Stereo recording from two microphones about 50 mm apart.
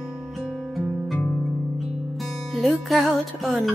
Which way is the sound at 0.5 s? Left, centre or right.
Centre.